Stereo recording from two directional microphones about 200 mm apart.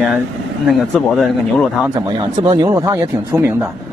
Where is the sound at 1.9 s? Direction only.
20° right (ahead or behind).